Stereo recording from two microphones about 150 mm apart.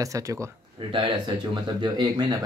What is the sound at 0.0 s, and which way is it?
Speech, 20° right (ahead or behind).